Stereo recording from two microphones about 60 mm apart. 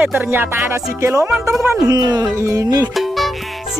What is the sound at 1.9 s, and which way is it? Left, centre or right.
Speech, right.